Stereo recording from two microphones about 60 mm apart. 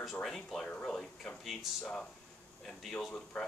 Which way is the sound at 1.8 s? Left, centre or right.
Centre.